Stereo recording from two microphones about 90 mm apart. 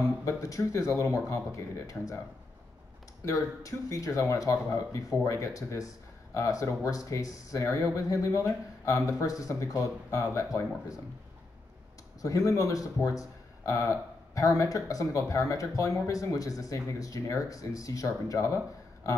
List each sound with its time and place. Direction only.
0.2 s speech: 35° left (ahead or behind)
3.3 s speech: 35° left (ahead or behind)
12.2 s speech: 40° left (ahead or behind)